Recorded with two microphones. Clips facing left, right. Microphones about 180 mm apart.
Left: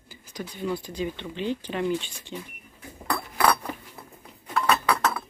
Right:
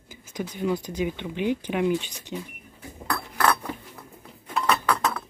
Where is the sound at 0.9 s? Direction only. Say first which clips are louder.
Right 3 dB; 10° right (ahead or behind).